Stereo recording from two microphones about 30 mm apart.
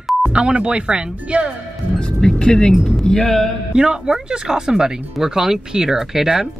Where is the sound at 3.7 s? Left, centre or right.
Right.